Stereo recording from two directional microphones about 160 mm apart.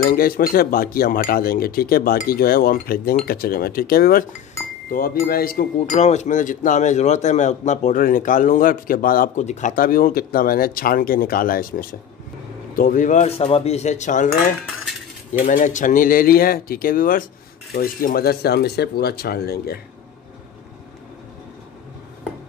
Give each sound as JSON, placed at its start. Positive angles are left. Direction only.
{"t": 0.0, "sound": "speech", "side_deg": 65}
{"t": 5.9, "sound": "speech", "side_deg": 45}
{"t": 15.4, "sound": "speech", "side_deg": 50}